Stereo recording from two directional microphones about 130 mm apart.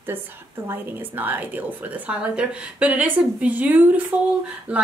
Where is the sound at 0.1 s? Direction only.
15° right (ahead or behind).